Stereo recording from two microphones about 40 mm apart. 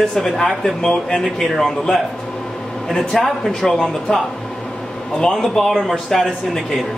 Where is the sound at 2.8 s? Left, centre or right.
Centre.